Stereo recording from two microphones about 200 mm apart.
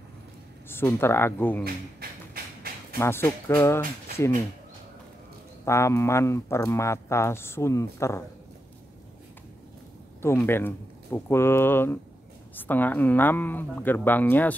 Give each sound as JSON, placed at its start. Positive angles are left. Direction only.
{"t": 0.7, "sound": "speech", "side_deg": 10}
{"t": 1.6, "sound": "a sound", "side_deg": -50}
{"t": 3.0, "sound": "speech", "side_deg": 10}
{"t": 5.7, "sound": "speech", "side_deg": 15}
{"t": 10.2, "sound": "speech", "side_deg": 10}